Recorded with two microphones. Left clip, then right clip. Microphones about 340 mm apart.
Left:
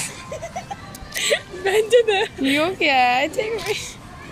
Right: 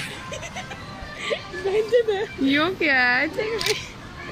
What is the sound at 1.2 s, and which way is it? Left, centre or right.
Speech, left.